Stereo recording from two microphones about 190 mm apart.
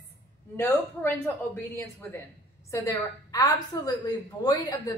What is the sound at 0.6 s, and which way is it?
A woman's voice, 10° left (ahead or behind).